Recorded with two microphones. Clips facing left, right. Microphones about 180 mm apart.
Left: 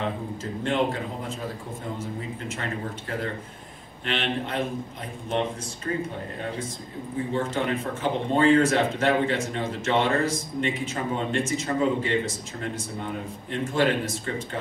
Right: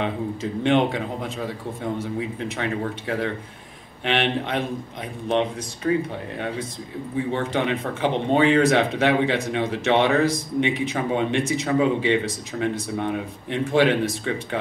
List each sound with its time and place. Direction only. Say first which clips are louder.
0.0 s speech: right 4 dB; 70° right (ahead or behind)
7.3 s speech: right 1 dB; 70° right (ahead or behind)